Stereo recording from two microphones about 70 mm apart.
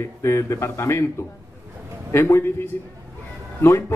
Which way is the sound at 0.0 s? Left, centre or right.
Left.